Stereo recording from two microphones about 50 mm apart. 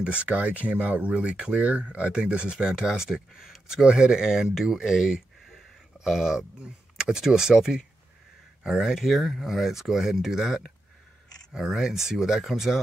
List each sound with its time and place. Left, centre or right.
0.0 s speech: right; by 12.7 s centre